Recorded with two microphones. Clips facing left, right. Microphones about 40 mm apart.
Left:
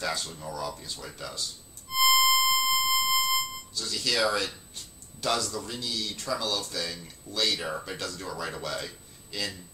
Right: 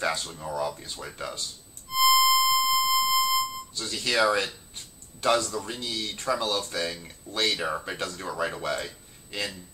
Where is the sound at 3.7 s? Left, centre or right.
Right.